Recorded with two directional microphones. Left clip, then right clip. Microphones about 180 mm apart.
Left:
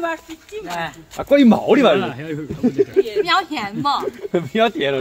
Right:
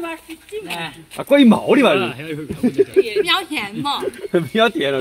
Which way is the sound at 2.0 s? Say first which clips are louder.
Right 1 dB; 35° left (ahead or behind).